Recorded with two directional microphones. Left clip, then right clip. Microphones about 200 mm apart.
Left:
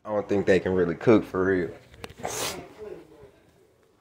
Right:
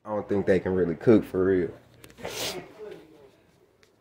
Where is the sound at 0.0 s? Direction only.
10° right (ahead or behind); by 1.7 s 25° right (ahead or behind).